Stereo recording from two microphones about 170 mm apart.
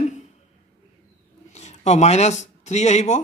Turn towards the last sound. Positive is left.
turn(degrees=40)  # may be behind; listen again after turning